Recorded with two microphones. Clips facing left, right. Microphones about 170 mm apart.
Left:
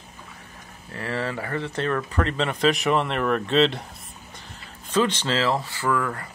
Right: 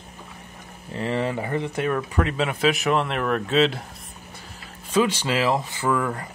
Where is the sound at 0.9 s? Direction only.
20° right (ahead or behind); by 3.8 s 5° right (ahead or behind).